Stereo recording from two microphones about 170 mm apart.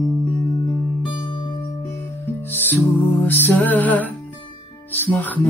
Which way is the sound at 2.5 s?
10° left (ahead or behind).